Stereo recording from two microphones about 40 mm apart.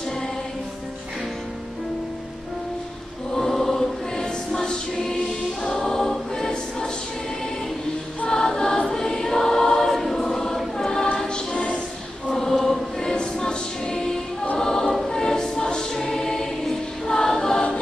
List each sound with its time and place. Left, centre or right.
3.3 s choir: centre
8.3 s choir: centre
12.3 s choir: centre
13.1 s choir: left